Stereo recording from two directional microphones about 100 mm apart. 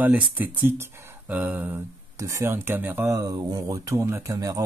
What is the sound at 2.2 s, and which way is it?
Speech, 30° right (ahead or behind).